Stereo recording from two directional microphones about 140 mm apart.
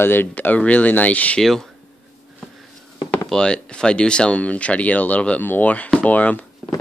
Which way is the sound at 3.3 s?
5° left (ahead or behind).